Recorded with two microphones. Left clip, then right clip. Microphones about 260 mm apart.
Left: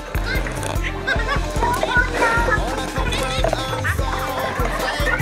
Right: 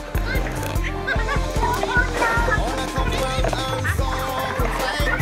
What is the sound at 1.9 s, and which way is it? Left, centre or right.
Music, centre.